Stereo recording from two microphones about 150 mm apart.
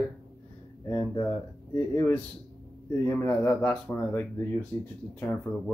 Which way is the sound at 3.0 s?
15° left (ahead or behind).